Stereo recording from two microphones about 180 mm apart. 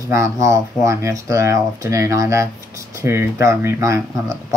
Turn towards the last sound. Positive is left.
turn(degrees=-15)  # may be behind; listen again after turning